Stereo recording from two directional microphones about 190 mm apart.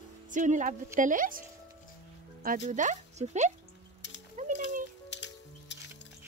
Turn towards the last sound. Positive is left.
turn(degrees=65)  # may be behind; listen again after turning